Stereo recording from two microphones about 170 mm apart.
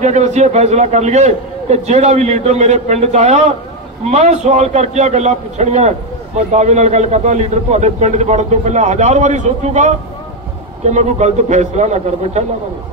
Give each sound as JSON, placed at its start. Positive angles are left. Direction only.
{"t": 0.0, "sound": "a man's voice", "side_deg": -45}